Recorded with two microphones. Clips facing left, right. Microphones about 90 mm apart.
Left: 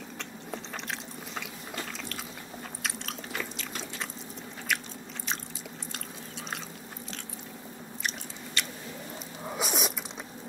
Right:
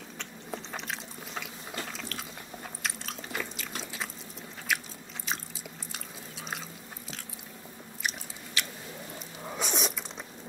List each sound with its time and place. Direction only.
0.2 s ratchet: centre (ahead or behind)
2.8 s biting: centre (ahead or behind)
8.0 s biting: 5° right (ahead or behind)
9.4 s vehicle: 5° left (ahead or behind)